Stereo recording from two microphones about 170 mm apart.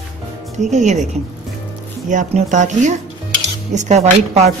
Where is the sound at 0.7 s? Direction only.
45° right (ahead or behind).